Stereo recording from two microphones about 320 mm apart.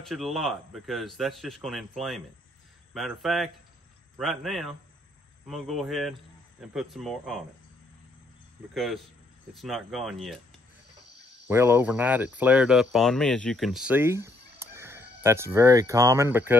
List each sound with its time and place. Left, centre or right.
0.0 s a man's voice: centre
8.7 s a man's voice: centre
11.4 s speech: centre